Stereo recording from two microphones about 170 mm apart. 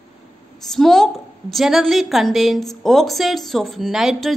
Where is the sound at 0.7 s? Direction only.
Centre (ahead or behind).